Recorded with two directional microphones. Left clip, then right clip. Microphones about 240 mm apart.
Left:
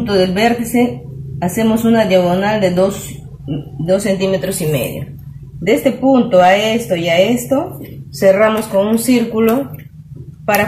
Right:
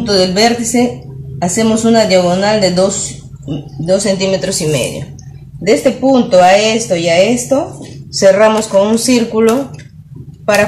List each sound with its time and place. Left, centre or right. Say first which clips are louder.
0.1 s speech: right 3 dB; centre